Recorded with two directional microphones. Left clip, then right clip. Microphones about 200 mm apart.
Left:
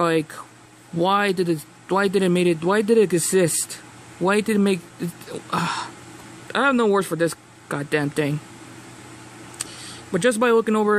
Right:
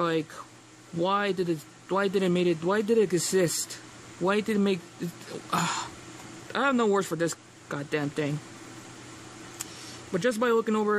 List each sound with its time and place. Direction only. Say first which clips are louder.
0.0 s speech: left 7 dB; 15° left (ahead or behind)
10.1 s speech: left 7 dB; 15° left (ahead or behind)